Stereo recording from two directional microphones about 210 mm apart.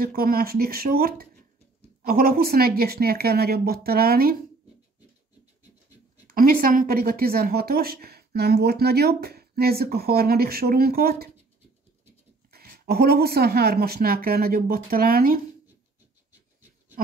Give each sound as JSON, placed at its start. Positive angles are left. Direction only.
{"t": 0.0, "sound": "speech", "side_deg": -45}
{"t": 6.2, "sound": "speech", "side_deg": -45}
{"t": 12.4, "sound": "speech", "side_deg": -45}